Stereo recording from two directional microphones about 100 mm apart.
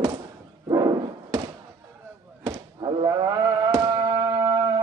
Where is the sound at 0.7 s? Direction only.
45° right (ahead or behind).